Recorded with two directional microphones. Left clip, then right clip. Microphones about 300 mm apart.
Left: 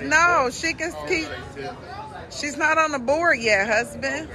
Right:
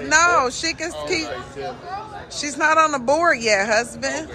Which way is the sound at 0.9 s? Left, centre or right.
Centre.